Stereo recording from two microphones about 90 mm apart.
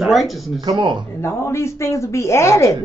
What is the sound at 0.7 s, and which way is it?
Speech, 60° right (ahead or behind).